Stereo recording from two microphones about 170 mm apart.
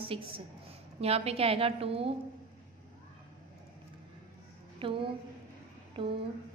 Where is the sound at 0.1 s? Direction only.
30° right (ahead or behind).